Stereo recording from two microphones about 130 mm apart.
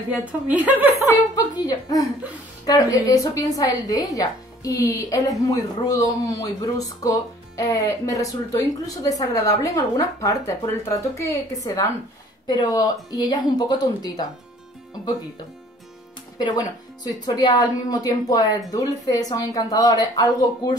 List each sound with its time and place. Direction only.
0.1 s a woman's voice: 10° right (ahead or behind)
1.3 s a woman's voice: 30° left (ahead or behind)
16.3 s a woman's voice: 30° left (ahead or behind)